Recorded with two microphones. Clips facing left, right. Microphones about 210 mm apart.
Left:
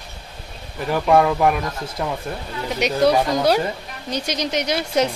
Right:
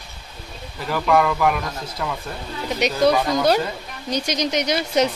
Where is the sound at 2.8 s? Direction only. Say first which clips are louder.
Left 1 dB; 10° left (ahead or behind).